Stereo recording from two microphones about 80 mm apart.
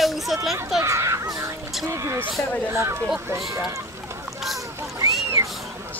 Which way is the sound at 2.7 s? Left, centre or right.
Right.